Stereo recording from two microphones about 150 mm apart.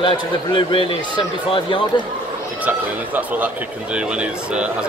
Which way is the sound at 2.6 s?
10° right (ahead or behind).